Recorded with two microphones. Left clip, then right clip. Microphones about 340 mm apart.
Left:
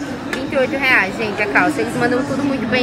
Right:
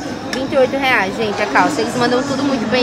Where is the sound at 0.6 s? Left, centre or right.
Right.